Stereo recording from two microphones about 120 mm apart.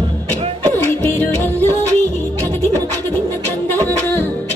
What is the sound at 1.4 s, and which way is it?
Music, 15° left (ahead or behind).